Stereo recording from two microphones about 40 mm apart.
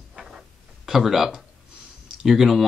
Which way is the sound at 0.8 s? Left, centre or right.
Centre.